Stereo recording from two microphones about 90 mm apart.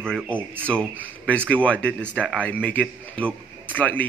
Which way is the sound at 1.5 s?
15° left (ahead or behind).